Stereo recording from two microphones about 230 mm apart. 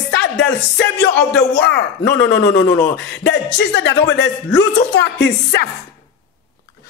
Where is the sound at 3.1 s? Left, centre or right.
Left.